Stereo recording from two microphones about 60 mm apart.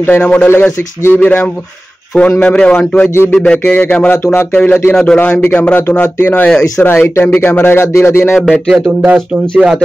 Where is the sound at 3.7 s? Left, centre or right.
Left.